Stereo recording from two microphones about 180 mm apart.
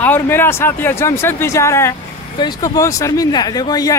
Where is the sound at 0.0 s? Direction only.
10° left (ahead or behind).